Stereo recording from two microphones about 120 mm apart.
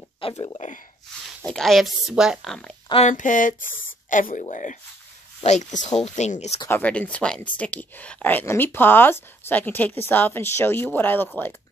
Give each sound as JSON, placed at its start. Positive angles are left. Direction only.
{"t": 0.2, "sound": "speech", "side_deg": 50}
{"t": 0.6, "sound": "speech", "side_deg": 90}
{"t": 1.4, "sound": "speech", "side_deg": 5}
{"t": 3.1, "sound": "speech", "side_deg": 90}
{"t": 5.4, "sound": "speech", "side_deg": 75}
{"t": 6.0, "sound": "speech", "side_deg": 70}
{"t": 6.7, "sound": "speech", "side_deg": 10}